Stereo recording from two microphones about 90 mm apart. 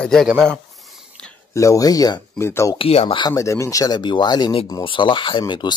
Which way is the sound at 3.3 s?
35° left (ahead or behind).